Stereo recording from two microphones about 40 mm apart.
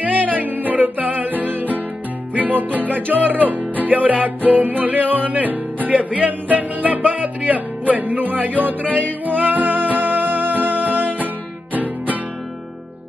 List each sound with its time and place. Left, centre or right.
0.0 s music: right